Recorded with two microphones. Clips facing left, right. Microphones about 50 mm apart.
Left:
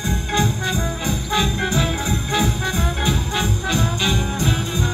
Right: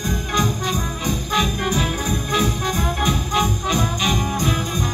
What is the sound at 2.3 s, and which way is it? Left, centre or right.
Music, centre.